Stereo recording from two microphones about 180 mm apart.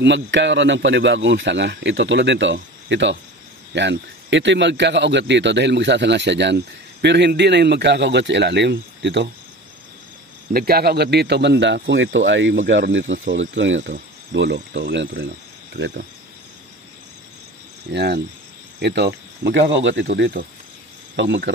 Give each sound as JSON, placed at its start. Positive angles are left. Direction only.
{"t": 0.0, "sound": "a man's voice", "side_deg": -80}
{"t": 10.5, "sound": "a man's voice", "side_deg": -55}
{"t": 14.3, "sound": "a man's voice", "side_deg": -80}
{"t": 17.9, "sound": "a man's voice", "side_deg": -70}
{"t": 21.2, "sound": "speech", "side_deg": -90}